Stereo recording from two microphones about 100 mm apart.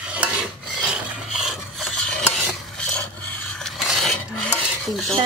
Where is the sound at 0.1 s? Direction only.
10° right (ahead or behind).